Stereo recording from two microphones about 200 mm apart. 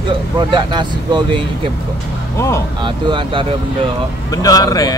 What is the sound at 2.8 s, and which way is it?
Speech, 25° right (ahead or behind).